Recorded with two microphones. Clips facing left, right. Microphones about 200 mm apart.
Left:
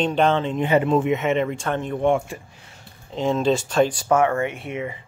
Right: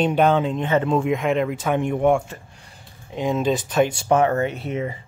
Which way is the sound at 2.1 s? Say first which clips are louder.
Right 1 dB; 10° left (ahead or behind).